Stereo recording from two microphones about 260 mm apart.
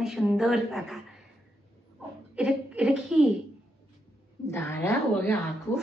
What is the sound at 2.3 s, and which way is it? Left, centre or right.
Speech, centre.